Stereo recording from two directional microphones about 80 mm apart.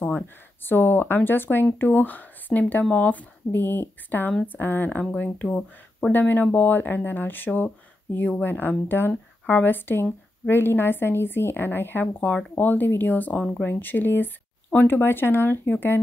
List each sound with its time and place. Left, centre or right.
0.7 s speech: left
5.5 s speech: centre
6.1 s speech: left